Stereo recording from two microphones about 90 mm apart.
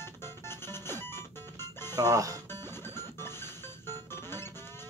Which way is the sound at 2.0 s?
40° right (ahead or behind).